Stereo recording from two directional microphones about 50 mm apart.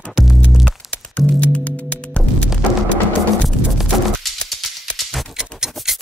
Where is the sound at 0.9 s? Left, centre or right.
Left.